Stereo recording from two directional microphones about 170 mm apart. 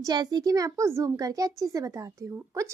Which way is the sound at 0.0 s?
25° right (ahead or behind).